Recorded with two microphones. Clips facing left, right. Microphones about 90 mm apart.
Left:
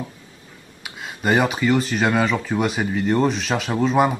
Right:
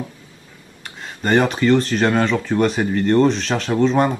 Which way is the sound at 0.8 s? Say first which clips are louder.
Even; 5° left (ahead or behind).